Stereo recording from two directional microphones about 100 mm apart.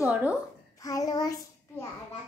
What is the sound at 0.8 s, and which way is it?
Speech, 35° left (ahead or behind).